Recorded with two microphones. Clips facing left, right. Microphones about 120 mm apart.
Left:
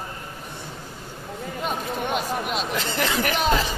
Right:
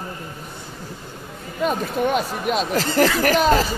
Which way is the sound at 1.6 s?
45° right (ahead or behind).